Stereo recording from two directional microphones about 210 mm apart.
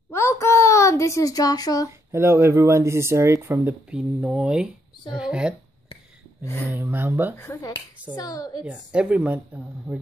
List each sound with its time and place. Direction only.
0.1 s a sound: 10° left (ahead or behind)
2.1 s speech: 10° right (ahead or behind)
6.4 s a woman's voice: 10° left (ahead or behind)
6.7 s speech: 10° right (ahead or behind)
7.3 s a woman's voice: 10° left (ahead or behind)
8.6 s speech: 5° right (ahead or behind)